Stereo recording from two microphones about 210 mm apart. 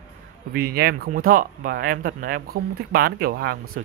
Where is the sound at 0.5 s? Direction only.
45° right (ahead or behind).